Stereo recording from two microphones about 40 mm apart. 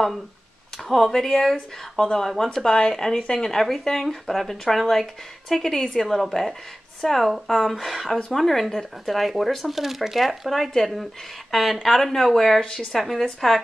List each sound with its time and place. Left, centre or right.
0.8 s speech: centre
2.0 s speech: left
2.2 s speech: centre
3.4 s speech: centre